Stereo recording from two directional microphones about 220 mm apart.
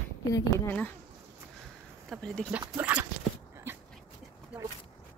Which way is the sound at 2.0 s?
5° left (ahead or behind).